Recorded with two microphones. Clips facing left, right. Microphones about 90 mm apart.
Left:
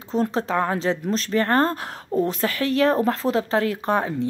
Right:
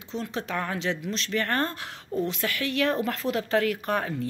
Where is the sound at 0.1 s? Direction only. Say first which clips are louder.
Left 9 dB; 40° left (ahead or behind).